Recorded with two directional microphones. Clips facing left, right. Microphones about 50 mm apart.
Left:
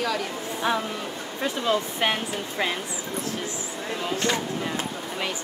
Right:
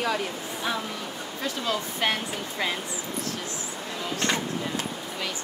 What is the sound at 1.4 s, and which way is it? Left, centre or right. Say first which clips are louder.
Speech: left 5 dB; left.